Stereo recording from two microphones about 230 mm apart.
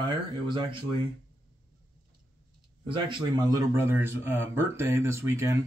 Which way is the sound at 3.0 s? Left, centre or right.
Centre.